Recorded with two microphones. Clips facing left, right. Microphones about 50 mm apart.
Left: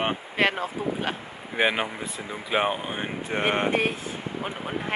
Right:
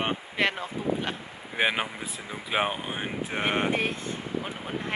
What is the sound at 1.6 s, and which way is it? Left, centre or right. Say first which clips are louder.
Speech: left 2 dB; centre.